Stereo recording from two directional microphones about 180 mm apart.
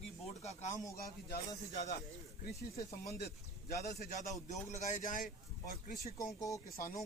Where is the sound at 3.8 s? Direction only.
20° left (ahead or behind).